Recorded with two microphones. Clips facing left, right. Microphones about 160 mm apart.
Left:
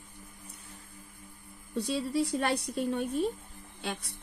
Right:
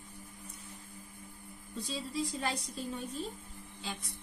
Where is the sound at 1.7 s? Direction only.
65° left (ahead or behind).